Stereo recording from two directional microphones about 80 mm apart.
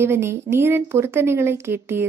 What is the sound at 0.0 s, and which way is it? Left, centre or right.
A woman's voice, right.